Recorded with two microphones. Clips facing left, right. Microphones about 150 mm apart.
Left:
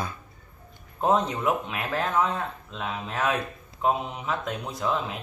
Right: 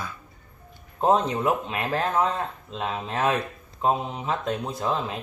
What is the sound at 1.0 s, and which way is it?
Speech, 30° right (ahead or behind).